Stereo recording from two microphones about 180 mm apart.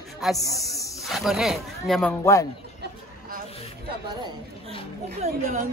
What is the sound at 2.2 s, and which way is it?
Speech, 20° left (ahead or behind).